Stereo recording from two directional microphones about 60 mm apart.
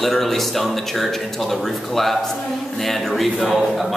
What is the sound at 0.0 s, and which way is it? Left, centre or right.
A man's voice, centre.